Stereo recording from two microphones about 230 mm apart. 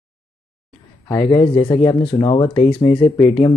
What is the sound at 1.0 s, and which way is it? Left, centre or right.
Speech, centre.